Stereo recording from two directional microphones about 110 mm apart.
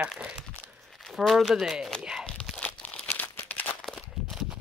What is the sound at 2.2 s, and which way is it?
Crumpling, 10° left (ahead or behind).